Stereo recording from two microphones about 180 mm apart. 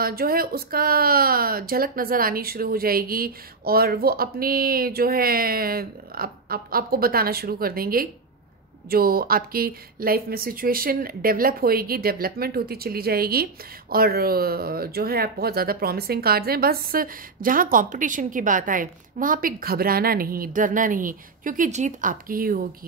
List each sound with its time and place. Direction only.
0.0 s speech: 55° right (ahead or behind)